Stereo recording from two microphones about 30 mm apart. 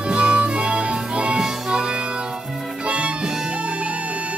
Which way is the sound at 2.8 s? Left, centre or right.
Right.